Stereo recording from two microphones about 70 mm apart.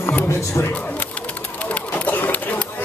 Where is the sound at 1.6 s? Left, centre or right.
Left.